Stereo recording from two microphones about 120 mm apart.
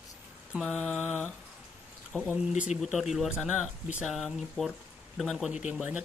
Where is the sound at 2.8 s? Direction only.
Centre (ahead or behind).